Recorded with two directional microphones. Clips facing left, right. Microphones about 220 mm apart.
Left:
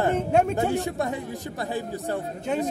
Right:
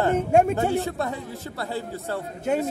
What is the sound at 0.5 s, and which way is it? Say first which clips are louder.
Speech: right 1 dB; 15° left (ahead or behind).